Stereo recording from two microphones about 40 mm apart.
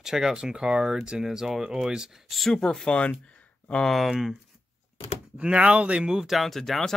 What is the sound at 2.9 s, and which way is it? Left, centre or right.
Speech, left.